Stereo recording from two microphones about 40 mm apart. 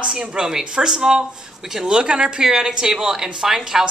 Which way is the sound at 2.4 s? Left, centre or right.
Centre.